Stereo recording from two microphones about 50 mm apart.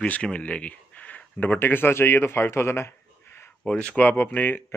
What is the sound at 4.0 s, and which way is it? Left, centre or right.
Speech, left.